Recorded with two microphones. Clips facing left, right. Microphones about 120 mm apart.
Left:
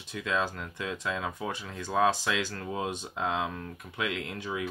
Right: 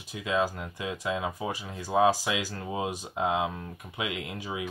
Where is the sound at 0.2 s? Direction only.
15° right (ahead or behind).